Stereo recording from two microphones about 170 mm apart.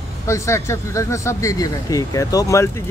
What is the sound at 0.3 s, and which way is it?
Speech, 15° left (ahead or behind).